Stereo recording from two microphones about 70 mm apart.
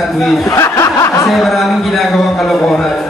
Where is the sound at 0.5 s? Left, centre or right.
Left.